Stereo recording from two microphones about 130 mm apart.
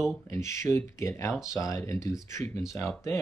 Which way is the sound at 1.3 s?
5° right (ahead or behind).